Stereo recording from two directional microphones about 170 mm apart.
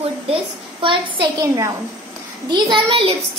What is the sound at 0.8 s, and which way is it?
A child's voice, 30° right (ahead or behind).